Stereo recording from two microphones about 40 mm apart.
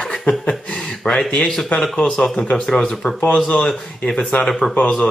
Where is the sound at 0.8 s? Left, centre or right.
Centre.